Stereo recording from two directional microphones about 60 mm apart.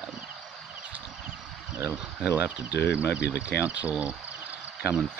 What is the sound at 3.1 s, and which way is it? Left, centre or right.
Speech, centre.